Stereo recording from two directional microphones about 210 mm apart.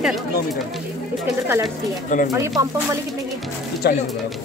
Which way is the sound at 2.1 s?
35° left (ahead or behind).